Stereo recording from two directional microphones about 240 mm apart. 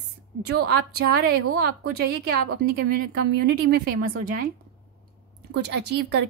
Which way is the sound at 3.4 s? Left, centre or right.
Right.